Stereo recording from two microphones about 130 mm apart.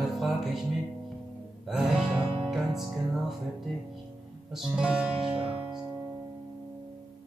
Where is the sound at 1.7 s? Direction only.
5° right (ahead or behind).